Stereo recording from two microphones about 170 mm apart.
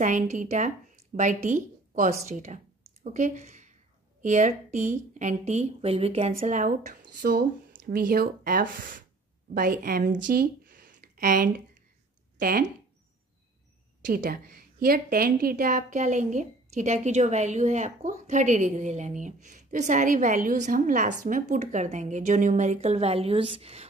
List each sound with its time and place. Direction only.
0.0 s a woman's voice: 50° right (ahead or behind)
14.0 s a woman's voice: 55° right (ahead or behind); by 23.9 s 35° right (ahead or behind)